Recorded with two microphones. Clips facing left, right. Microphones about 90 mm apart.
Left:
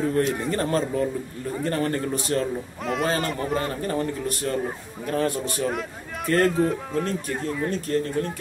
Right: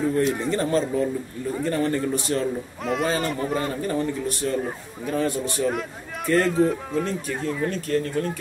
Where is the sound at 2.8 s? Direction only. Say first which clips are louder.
Even; centre (ahead or behind).